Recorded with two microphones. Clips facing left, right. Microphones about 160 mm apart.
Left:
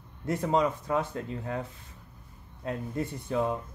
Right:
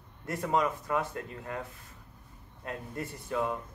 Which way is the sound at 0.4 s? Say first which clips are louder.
Left 2 dB; 25° left (ahead or behind).